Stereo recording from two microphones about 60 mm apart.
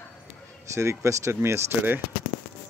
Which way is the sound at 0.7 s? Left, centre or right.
Right.